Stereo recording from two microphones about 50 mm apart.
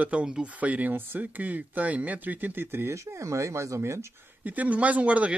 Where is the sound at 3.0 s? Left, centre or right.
Right.